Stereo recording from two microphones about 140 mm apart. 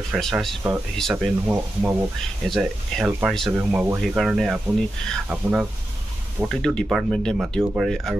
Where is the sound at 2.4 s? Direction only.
Centre (ahead or behind).